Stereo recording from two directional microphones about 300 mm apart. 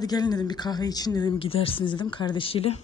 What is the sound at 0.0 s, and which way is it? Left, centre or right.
Speech, centre.